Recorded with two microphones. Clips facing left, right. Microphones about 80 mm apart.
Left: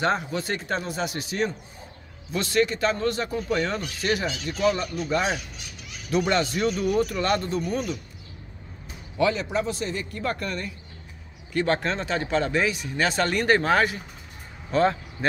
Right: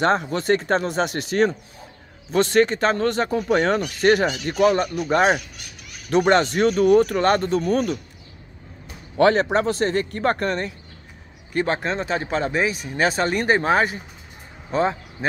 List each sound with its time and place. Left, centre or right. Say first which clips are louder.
0.0 s speech: right 5 dB; right
2.3 s speech: right 6 dB; right
2.9 s speech: right 5 dB; right
9.2 s speech: right 7 dB; right
9.6 s speech: right 7 dB; right
10.4 s speech: right 7 dB; right